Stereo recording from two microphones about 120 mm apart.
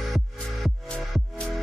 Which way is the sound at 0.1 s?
Centre (ahead or behind).